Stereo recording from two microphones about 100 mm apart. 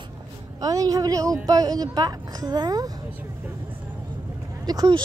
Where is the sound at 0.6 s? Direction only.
35° right (ahead or behind).